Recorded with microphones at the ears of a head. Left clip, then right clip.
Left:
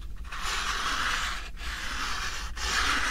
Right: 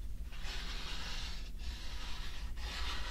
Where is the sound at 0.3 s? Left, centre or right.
Left.